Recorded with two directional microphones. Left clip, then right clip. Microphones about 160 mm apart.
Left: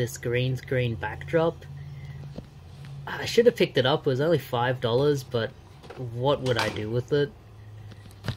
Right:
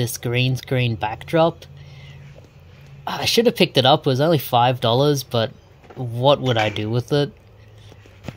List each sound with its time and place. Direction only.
0.0 s speech: 65° right (ahead or behind)
3.1 s speech: 65° right (ahead or behind)